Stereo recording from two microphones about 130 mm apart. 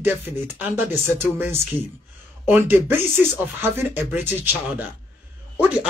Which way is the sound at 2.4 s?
15° right (ahead or behind).